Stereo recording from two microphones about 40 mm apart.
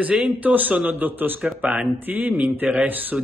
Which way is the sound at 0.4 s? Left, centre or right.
Right.